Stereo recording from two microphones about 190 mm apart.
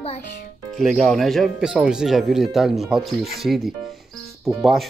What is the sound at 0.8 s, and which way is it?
Speech, centre (ahead or behind).